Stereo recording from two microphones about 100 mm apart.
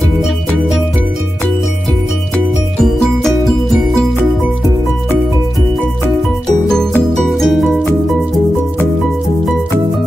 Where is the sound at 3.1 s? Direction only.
Centre (ahead or behind).